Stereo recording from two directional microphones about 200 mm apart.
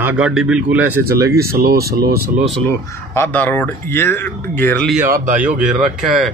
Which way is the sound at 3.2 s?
10° left (ahead or behind).